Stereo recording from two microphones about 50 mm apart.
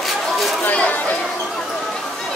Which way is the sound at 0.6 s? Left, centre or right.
Left.